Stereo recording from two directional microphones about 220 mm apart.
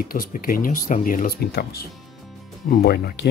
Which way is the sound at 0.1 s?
40° left (ahead or behind).